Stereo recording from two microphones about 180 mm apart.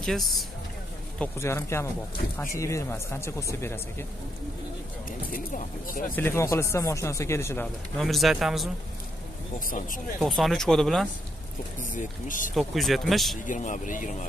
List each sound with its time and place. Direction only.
0.0 s speech: centre (ahead or behind)
1.2 s speech: 15° left (ahead or behind)
5.3 s speech: 45° left (ahead or behind)
6.1 s speech: 15° left (ahead or behind)
8.0 s speech: centre (ahead or behind)
9.7 s speech: 50° left (ahead or behind)
10.2 s speech: centre (ahead or behind)
11.8 s speech: 45° left (ahead or behind)
12.5 s speech: centre (ahead or behind)
13.5 s speech: 45° left (ahead or behind)